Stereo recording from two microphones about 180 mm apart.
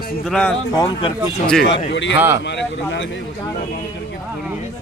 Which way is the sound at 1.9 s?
90° left.